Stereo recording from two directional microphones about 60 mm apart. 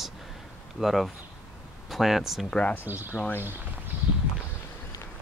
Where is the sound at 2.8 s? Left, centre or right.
Right.